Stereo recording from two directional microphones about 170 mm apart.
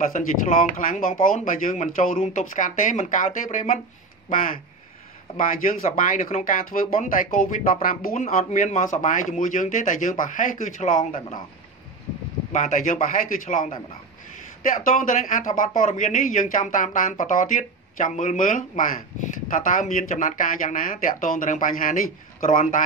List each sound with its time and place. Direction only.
0.0 s speech: 50° left (ahead or behind)
5.4 s speech: 55° left (ahead or behind)
12.5 s speech: 50° left (ahead or behind)